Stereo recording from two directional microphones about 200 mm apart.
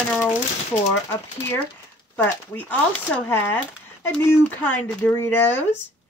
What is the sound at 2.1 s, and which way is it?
A woman's voice, 5° left (ahead or behind).